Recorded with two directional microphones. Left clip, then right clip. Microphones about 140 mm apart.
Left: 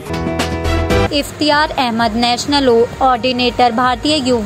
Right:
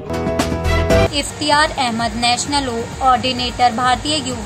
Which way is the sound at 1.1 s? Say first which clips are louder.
Left 2 dB; 45° left (ahead or behind).